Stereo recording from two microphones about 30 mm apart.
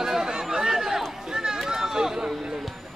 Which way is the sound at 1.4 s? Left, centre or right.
Centre.